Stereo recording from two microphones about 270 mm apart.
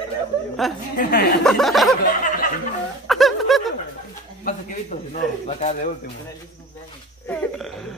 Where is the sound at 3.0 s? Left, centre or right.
Centre.